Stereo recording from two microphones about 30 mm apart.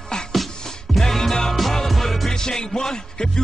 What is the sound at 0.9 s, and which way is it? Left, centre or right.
Music, centre.